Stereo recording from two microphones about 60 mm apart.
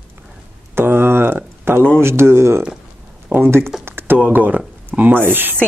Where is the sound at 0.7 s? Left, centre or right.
Right.